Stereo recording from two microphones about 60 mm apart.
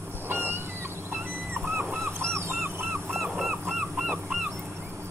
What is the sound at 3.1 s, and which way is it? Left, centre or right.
Honk, centre.